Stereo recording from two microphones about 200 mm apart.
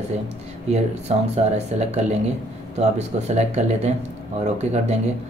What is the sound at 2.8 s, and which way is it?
Speech, 35° right (ahead or behind).